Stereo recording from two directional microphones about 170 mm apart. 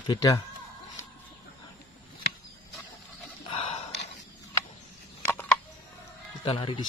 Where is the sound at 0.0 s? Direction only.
20° left (ahead or behind).